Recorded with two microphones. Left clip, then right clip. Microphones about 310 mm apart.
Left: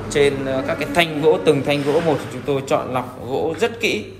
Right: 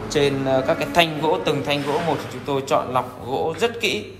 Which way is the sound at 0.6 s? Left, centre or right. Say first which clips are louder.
Right 3 dB; centre.